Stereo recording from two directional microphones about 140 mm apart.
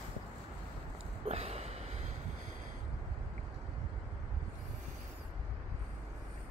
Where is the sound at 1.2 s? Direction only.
45° right (ahead or behind).